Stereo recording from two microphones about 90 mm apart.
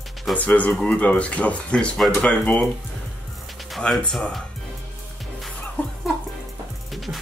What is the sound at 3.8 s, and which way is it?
Speech, 10° left (ahead or behind).